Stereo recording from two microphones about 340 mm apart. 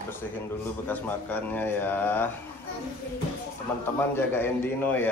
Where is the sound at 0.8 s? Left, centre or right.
Centre.